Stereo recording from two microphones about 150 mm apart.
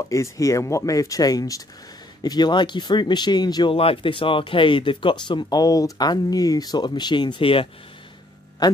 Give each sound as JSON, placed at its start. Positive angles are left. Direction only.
{"t": 0.1, "sound": "speech", "side_deg": 20}